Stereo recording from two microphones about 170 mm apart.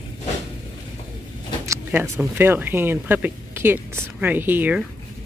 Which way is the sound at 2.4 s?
10° right (ahead or behind).